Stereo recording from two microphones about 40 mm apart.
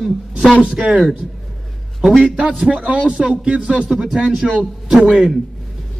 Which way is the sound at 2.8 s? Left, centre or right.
Right.